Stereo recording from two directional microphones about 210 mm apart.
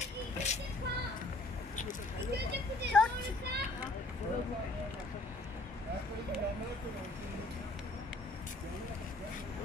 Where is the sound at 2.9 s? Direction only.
5° left (ahead or behind).